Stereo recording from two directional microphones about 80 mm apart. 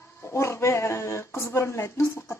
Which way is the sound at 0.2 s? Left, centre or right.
Left.